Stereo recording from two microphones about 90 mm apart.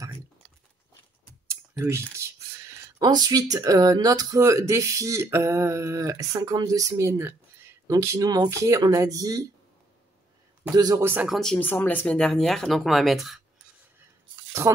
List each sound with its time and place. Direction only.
1.5 s a sound: 30° right (ahead or behind)
3.0 s speech: 50° right (ahead or behind)
10.7 s speech: 45° right (ahead or behind)
11.0 s speech: 25° right (ahead or behind)
11.2 s speech: centre (ahead or behind)
11.5 s speech: 20° left (ahead or behind)
12.2 s speech: 5° left (ahead or behind)
14.6 s speech: 30° right (ahead or behind)